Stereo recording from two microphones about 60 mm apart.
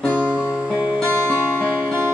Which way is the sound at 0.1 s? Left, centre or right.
Right.